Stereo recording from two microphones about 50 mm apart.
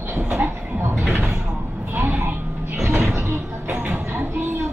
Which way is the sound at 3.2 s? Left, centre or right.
Right.